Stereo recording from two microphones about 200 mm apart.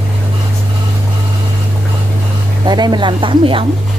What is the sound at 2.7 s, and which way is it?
Speech, 20° right (ahead or behind).